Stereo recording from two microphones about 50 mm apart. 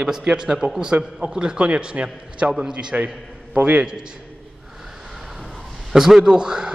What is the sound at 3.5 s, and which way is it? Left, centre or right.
Speech, right.